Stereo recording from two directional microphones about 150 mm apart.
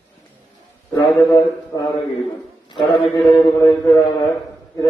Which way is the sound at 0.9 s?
25° left (ahead or behind).